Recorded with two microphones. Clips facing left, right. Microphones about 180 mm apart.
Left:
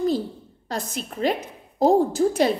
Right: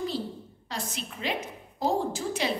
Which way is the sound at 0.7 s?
45° left (ahead or behind).